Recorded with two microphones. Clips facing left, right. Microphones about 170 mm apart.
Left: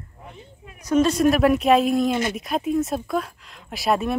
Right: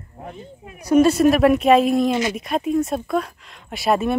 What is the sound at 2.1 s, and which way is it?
Speech, 55° left (ahead or behind).